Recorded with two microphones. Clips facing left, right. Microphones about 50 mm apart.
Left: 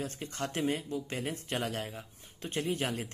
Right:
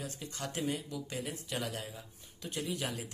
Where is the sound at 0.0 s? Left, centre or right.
Left.